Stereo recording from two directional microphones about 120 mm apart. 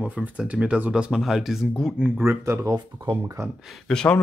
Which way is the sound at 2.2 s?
20° right (ahead or behind).